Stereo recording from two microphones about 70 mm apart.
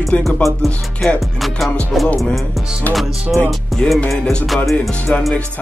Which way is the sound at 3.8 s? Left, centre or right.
Centre.